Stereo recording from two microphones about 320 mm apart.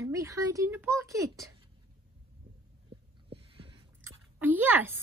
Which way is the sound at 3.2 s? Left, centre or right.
Centre.